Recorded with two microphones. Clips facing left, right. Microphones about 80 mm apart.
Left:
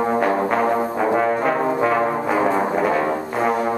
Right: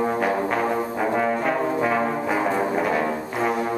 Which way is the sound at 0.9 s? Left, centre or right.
Centre.